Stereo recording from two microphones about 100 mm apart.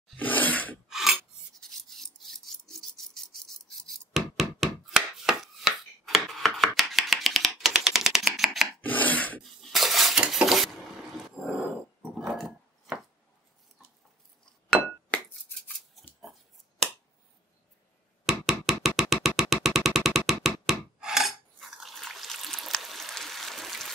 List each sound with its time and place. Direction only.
0.2 s a sound: 15° left (ahead or behind)
0.8 s filing: 5° right (ahead or behind)
8.8 s rub: 15° left (ahead or behind)
9.4 s dishes: centre (ahead or behind)
11.4 s telephone bell ringing: 10° right (ahead or behind)
12.2 s chopping: 5° right (ahead or behind)
18.2 s a sound: 5° right (ahead or behind)